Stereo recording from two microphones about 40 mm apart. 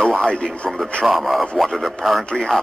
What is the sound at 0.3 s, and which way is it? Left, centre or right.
Speech, left.